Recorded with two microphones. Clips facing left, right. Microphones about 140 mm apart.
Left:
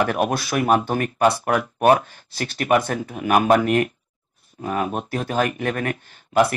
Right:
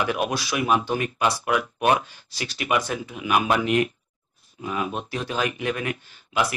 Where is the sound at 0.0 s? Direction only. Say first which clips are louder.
Left 4 dB; 50° left (ahead or behind).